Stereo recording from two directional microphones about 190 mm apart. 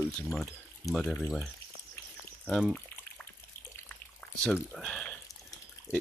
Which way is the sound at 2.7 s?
10° left (ahead or behind).